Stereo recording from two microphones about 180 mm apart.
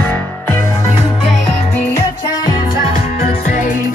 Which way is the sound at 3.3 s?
45° left (ahead or behind).